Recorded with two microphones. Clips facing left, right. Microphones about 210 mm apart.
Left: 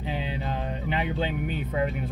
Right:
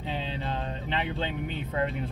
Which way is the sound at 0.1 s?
15° left (ahead or behind).